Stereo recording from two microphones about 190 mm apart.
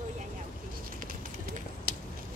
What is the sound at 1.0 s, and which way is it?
Run, 45° right (ahead or behind).